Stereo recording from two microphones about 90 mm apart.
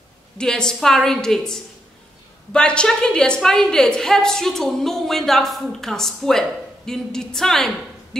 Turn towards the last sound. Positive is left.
turn(degrees=5)  # may be behind; listen again after turning